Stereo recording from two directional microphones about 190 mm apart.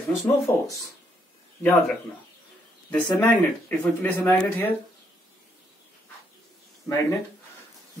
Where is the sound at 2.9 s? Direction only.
10° left (ahead or behind).